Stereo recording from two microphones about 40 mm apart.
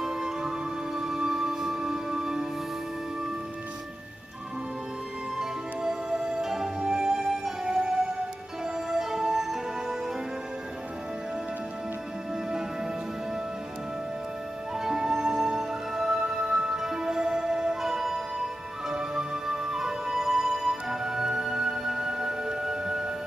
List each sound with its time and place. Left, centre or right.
0.0 s music: centre
5.4 s music: centre
6.0 s music: right
12.4 s music: centre
14.7 s music: centre